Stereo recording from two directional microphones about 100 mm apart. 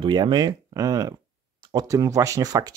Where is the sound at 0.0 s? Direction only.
45° right (ahead or behind).